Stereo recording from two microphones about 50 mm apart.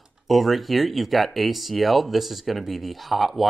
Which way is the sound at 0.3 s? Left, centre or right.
Centre.